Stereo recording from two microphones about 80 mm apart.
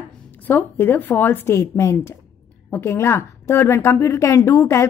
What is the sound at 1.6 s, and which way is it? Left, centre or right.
A woman's voice, left.